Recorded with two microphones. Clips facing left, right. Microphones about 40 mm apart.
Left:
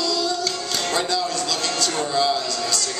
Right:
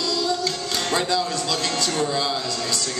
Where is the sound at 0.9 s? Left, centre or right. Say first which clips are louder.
Right 1 dB; centre.